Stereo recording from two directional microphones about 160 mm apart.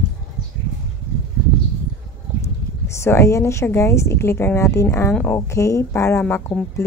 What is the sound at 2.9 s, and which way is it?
A woman's voice, 15° left (ahead or behind).